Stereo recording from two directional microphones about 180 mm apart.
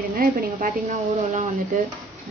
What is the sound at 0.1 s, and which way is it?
Speech, 55° right (ahead or behind).